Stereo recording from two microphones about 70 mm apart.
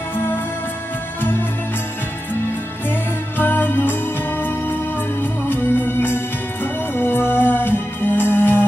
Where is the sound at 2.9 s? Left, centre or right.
Left.